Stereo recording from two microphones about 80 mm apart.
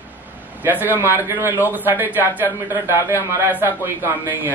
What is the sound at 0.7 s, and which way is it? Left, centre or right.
A man's voice, right.